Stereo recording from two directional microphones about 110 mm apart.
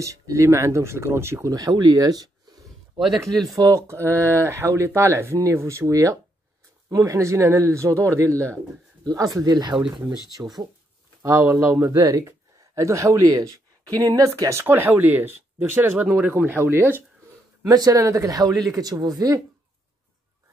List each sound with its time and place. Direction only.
0.0 s speech: 30° right (ahead or behind)
10.4 s speech: 20° right (ahead or behind)
11.8 s speech: 30° right (ahead or behind)
17.6 s speech: 30° right (ahead or behind)